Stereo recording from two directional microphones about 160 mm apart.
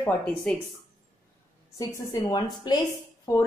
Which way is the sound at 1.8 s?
20° left (ahead or behind).